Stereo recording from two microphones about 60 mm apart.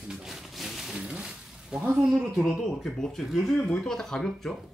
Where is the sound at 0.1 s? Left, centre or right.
Centre.